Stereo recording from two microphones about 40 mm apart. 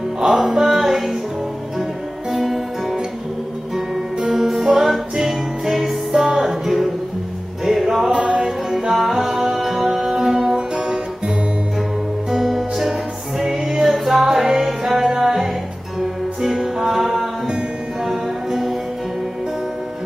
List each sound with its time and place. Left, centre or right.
0.2 s music: centre
2.3 s music: centre
4.2 s music: centre
13.4 s music: centre